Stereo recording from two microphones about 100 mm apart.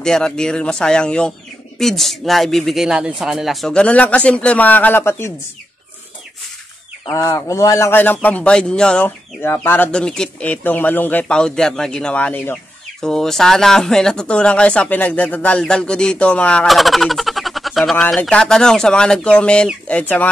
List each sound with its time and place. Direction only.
0.0 s a man's voice: 5° left (ahead or behind)
3.7 s speech: 10° left (ahead or behind)
7.1 s speech: 30° left (ahead or behind); by 9.1 s 10° left (ahead or behind)
9.4 s speech: 20° left (ahead or behind)
9.8 s speech: 10° left (ahead or behind)
16.6 s speech: centre (ahead or behind)